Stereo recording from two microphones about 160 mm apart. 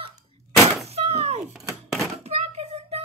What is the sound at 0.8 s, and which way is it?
Thunk, 40° right (ahead or behind).